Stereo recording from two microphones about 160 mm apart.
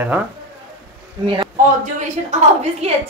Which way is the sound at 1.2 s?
30° right (ahead or behind).